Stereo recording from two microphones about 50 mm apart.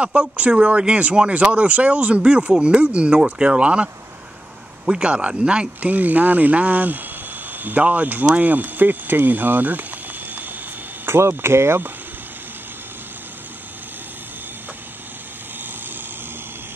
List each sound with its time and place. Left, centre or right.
0.0 s speech: right
5.9 s speech: right
11.1 s speech: right